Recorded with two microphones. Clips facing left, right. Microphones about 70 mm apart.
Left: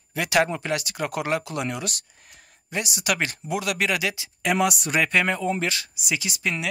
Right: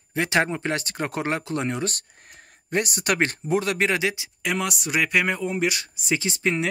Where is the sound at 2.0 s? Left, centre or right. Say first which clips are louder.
Right 3 dB; right.